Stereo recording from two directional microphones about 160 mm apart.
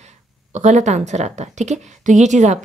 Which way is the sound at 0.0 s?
45° right (ahead or behind).